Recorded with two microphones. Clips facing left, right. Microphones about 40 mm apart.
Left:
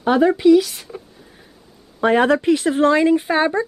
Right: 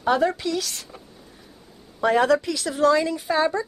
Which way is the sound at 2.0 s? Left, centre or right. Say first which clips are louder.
Left 4 dB; left.